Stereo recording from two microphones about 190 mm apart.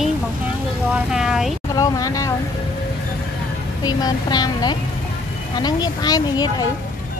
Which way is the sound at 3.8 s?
20° left (ahead or behind).